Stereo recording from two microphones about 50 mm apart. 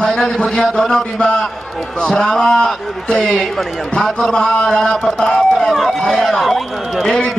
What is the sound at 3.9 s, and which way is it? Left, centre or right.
A man's voice, centre.